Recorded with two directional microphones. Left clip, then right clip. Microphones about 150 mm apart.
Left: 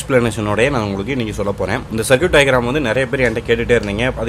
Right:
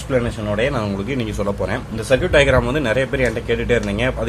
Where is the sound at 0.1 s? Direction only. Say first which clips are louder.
Left 5 dB; 45° left (ahead or behind).